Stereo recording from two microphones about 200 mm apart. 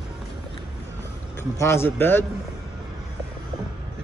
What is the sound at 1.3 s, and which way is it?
Speech, 10° left (ahead or behind).